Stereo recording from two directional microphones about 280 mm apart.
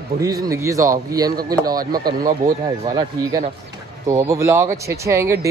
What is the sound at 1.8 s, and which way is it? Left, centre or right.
Speech, right.